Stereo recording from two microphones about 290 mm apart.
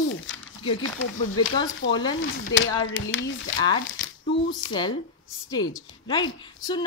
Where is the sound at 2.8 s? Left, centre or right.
Left.